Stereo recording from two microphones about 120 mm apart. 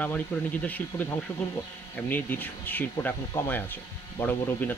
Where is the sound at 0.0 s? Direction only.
10° left (ahead or behind).